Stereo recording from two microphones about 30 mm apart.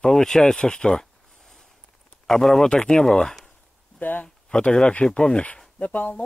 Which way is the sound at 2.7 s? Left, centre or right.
Left.